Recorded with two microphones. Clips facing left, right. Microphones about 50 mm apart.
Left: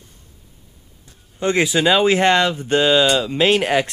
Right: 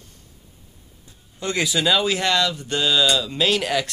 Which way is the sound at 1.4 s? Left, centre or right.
Left.